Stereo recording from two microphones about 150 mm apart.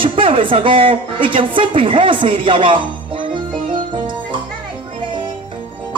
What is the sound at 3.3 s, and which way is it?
Music, 30° right (ahead or behind).